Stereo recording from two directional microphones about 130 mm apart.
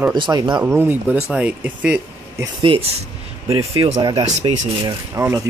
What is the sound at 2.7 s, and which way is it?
Speech, 40° right (ahead or behind).